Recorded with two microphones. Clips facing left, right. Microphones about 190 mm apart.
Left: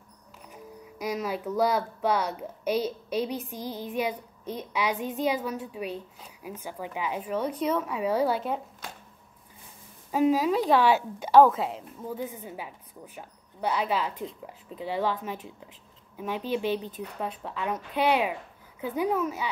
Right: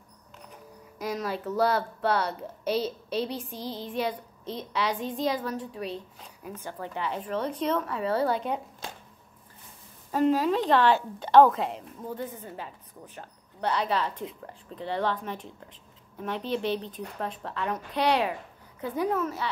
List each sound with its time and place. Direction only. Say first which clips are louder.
1.0 s a woman's voice: left 1 dB; 10° left (ahead or behind)
10.1 s a woman's voice: even; 10° left (ahead or behind)